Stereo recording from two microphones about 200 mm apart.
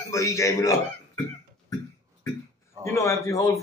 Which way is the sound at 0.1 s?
15° left (ahead or behind).